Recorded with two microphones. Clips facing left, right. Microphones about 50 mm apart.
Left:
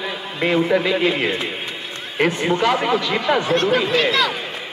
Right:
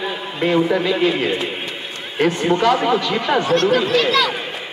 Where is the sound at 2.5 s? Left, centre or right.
Centre; by 4.3 s left.